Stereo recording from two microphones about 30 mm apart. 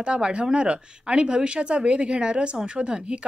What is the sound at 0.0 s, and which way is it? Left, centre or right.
Speech, right.